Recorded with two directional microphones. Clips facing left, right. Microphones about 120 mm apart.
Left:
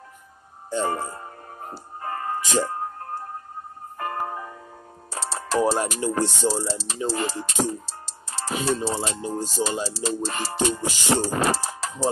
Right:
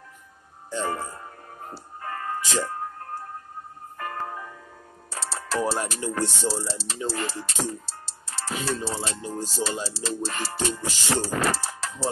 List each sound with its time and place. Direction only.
0.7 s music: 20° left (ahead or behind)
4.3 s music: 25° left (ahead or behind)
6.9 s speech: 15° left (ahead or behind)